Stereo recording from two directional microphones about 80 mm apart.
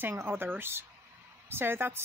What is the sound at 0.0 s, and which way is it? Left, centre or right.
Speech, right.